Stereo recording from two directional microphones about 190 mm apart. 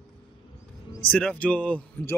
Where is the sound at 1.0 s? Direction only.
5° left (ahead or behind).